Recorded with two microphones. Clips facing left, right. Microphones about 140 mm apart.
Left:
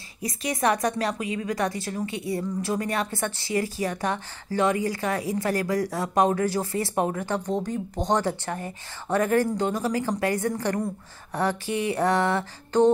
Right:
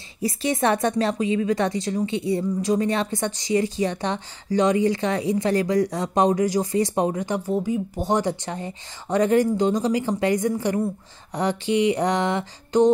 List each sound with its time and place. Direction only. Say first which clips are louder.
0.2 s a woman's voice: right 4 dB; 30° right (ahead or behind)